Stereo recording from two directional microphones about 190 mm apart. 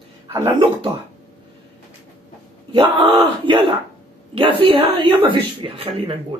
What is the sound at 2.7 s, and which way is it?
Speech, 25° right (ahead or behind).